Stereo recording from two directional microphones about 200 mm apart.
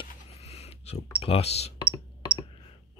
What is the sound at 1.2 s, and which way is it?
Speech, 30° left (ahead or behind).